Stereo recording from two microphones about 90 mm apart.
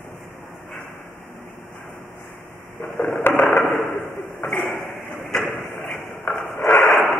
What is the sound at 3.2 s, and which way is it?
Mechanisms, 25° left (ahead or behind).